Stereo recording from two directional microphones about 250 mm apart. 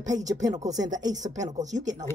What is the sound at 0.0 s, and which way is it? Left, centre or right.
A woman's voice, centre.